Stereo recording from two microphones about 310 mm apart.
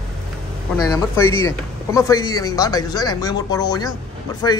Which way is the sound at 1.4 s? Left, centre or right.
Centre.